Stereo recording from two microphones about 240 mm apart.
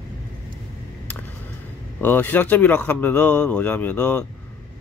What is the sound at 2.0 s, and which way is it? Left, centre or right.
Speech, centre.